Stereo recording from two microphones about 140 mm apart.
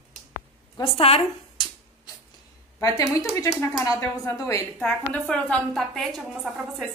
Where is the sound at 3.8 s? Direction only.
20° left (ahead or behind).